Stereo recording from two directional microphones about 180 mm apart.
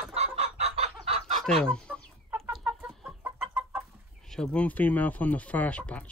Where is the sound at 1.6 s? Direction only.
5° left (ahead or behind).